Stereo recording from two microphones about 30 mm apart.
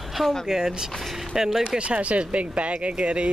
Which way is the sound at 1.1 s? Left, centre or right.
Centre.